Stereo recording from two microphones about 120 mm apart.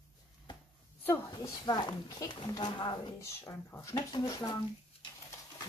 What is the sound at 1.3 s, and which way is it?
Speech, 30° left (ahead or behind).